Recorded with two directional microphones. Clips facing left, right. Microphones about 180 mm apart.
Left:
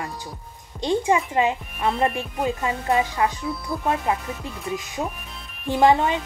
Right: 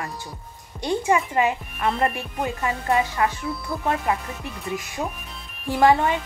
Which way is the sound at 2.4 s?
20° left (ahead or behind).